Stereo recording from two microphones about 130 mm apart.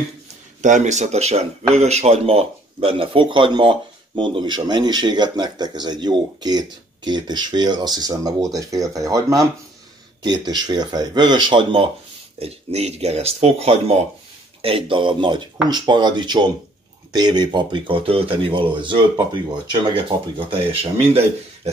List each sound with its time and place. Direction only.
0.6 s speech: 70° right (ahead or behind); by 11.9 s 40° right (ahead or behind)
12.4 s speech: 55° right (ahead or behind)